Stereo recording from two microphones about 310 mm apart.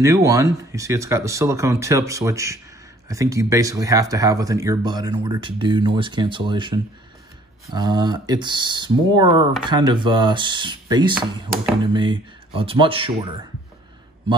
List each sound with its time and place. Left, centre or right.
0.0 s speech: centre